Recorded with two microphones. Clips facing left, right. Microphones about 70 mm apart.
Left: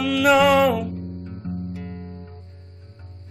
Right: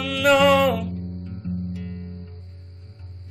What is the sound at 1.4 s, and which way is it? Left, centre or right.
Music, left.